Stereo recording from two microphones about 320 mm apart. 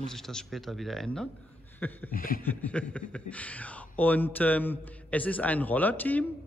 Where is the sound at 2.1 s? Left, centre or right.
Left.